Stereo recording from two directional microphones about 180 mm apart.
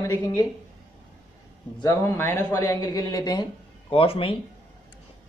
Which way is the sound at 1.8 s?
20° left (ahead or behind).